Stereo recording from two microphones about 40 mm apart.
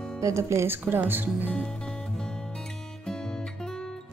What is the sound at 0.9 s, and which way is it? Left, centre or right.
Speech, right.